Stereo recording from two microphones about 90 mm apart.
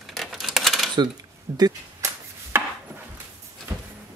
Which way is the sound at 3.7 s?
25° right (ahead or behind).